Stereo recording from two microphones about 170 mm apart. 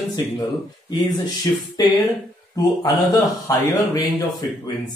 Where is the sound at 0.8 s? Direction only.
25° left (ahead or behind).